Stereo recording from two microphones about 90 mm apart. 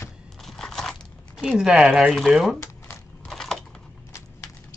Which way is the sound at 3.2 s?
5° left (ahead or behind).